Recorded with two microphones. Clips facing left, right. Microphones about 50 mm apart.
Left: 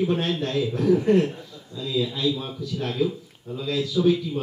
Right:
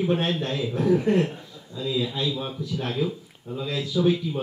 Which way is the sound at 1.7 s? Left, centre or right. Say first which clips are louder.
Left 1 dB; centre.